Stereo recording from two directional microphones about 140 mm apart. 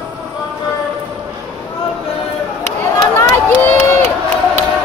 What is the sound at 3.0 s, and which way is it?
Run, 20° left (ahead or behind).